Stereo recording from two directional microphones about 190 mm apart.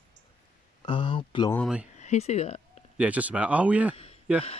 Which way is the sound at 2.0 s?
35° left (ahead or behind).